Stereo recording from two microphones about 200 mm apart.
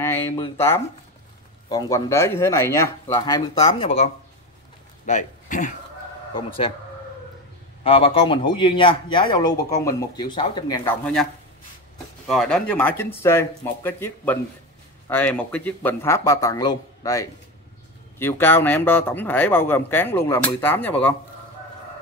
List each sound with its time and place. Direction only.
0.0 s speech: 10° left (ahead or behind); by 4.1 s 30° left (ahead or behind)
5.0 s speech: 40° left (ahead or behind)
6.3 s a man's voice: 25° left (ahead or behind)
7.8 s a man's voice: 30° left (ahead or behind)
10.9 s speech: 5° left (ahead or behind)
12.3 s speech: centre (ahead or behind)